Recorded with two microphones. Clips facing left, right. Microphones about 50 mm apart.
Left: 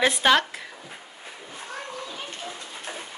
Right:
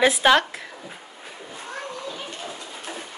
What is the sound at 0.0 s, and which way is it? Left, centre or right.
Speech, centre.